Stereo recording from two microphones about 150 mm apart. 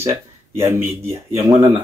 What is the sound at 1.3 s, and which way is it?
Speech, 20° right (ahead or behind).